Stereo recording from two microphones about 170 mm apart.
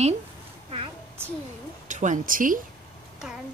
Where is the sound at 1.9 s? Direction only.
50° right (ahead or behind).